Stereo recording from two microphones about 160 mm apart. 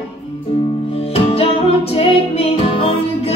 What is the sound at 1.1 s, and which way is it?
Music, 40° left (ahead or behind).